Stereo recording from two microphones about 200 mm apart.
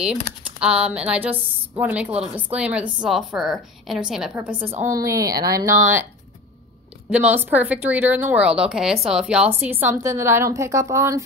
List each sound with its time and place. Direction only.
0.0 s a woman's voice: 5° right (ahead or behind)
7.1 s a woman's voice: 5° right (ahead or behind)